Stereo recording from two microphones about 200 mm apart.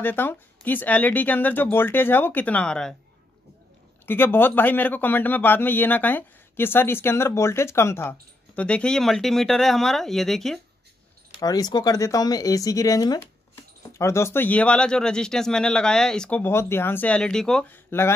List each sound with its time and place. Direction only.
0.0 s a man's voice: 10° left (ahead or behind)
4.0 s a man's voice: 10° left (ahead or behind)
11.4 s a man's voice: 20° left (ahead or behind)